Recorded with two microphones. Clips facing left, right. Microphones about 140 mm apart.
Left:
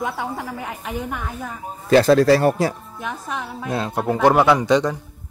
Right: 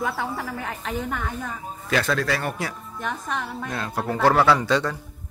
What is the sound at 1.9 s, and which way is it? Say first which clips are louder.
Speech: left 11 dB; 35° left (ahead or behind).